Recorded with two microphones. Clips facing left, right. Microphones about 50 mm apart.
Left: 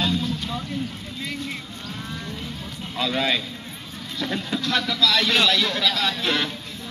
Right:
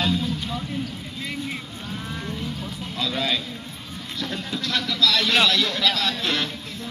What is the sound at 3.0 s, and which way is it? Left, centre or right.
Speech, left.